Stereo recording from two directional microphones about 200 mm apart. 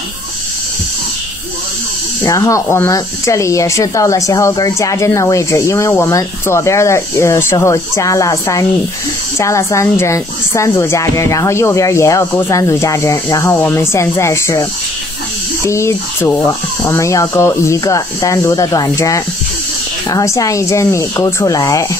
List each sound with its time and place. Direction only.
2.2 s speech: 15° left (ahead or behind)